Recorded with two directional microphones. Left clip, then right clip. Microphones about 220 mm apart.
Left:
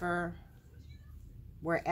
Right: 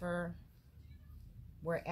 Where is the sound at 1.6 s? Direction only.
35° left (ahead or behind).